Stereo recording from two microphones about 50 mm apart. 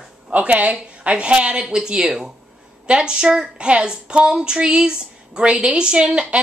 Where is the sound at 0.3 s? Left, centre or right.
Right.